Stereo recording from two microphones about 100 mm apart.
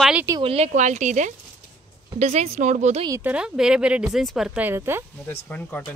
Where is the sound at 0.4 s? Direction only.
80° right.